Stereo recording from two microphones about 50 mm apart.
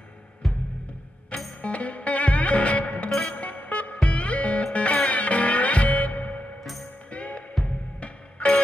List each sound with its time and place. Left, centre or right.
0.4 s music: centre
1.6 s music: left